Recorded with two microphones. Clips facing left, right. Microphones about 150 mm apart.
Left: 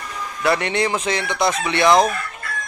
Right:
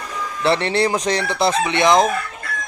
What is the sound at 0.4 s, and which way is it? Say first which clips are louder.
Chicken: right 2 dB; 30° right (ahead or behind).